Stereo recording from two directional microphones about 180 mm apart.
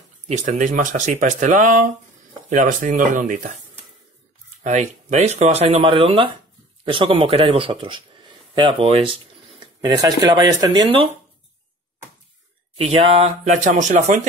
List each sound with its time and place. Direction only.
0.3 s speech: 40° right (ahead or behind)
4.6 s speech: 40° right (ahead or behind)
12.7 s speech: 30° right (ahead or behind)
13.4 s speech: 45° right (ahead or behind)